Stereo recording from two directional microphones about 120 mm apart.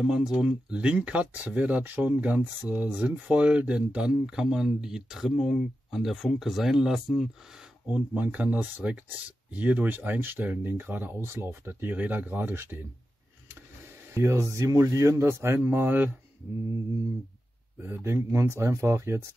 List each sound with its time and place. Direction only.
0.0 s speech: 5° right (ahead or behind)
7.9 s speech: 10° right (ahead or behind)
14.1 s speech: 25° right (ahead or behind)
17.7 s speech: 20° right (ahead or behind)